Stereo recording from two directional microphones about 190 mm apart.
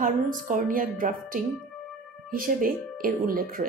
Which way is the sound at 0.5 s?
45° right (ahead or behind).